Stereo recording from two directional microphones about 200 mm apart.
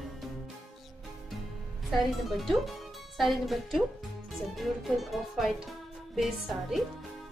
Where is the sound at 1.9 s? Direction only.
Centre (ahead or behind).